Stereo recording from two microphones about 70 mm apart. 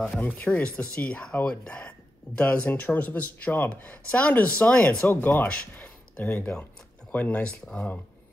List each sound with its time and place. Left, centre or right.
0.0 s speech: left
7.6 s speech: centre